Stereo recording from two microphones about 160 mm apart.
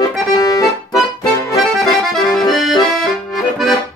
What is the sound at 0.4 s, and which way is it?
Accordion, 20° left (ahead or behind).